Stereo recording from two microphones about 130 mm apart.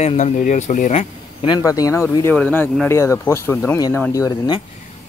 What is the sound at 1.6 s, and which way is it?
Speech, 25° left (ahead or behind).